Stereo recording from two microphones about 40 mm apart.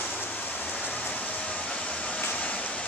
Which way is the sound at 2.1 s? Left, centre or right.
Left.